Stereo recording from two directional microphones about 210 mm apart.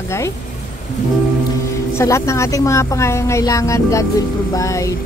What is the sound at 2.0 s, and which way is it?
A woman's voice, 15° left (ahead or behind).